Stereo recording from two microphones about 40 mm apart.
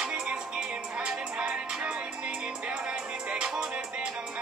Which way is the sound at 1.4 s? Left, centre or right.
Right.